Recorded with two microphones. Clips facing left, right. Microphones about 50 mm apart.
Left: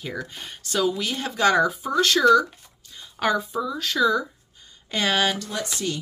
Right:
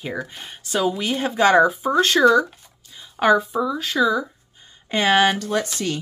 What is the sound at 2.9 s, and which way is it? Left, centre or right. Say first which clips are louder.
Speech: right 6 dB; centre.